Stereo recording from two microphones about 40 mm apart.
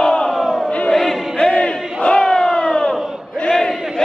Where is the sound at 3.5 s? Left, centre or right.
Centre.